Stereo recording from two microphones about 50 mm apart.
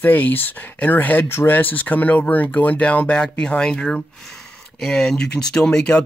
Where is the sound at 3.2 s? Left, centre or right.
Centre.